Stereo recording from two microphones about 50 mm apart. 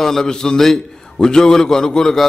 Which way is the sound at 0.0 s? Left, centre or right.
Centre.